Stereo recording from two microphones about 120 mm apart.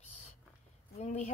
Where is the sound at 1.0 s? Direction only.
70° left (ahead or behind).